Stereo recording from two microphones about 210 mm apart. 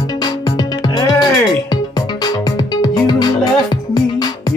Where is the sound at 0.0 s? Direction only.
20° left (ahead or behind).